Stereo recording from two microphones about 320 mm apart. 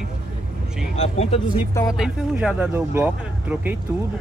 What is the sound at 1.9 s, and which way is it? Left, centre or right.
Speech, centre.